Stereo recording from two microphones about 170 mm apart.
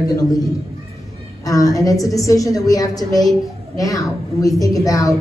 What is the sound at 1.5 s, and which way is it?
A woman's voice, 20° left (ahead or behind).